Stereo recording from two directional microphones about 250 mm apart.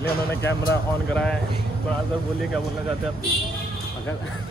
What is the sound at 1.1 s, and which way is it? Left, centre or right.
Speech, centre.